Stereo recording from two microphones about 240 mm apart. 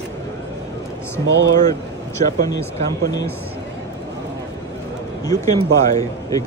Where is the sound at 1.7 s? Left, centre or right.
Centre.